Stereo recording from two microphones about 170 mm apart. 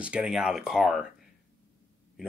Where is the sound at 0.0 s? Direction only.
5° right (ahead or behind).